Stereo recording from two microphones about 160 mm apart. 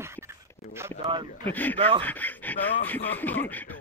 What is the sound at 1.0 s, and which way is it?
Speech, 30° right (ahead or behind).